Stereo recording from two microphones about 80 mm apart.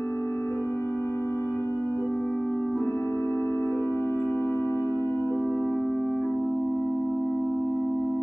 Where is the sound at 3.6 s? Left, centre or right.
Centre.